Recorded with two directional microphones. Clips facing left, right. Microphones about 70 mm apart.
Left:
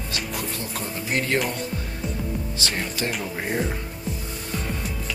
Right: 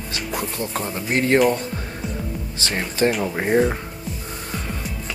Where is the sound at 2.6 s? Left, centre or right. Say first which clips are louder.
Right 9 dB; right.